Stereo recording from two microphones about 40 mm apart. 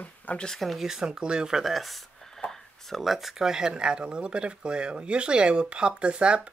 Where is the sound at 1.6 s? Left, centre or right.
Centre.